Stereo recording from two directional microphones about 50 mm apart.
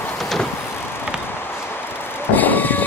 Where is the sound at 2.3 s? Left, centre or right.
Left.